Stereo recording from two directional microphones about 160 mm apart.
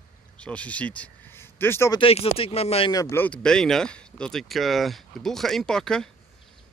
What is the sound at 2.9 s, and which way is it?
Speech, 20° left (ahead or behind).